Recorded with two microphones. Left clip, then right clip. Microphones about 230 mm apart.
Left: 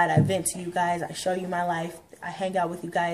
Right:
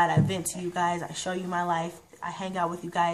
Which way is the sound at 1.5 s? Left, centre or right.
Right.